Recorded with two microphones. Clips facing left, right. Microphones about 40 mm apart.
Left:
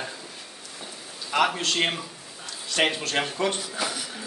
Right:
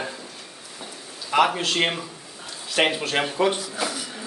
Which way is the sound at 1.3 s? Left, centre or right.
Centre.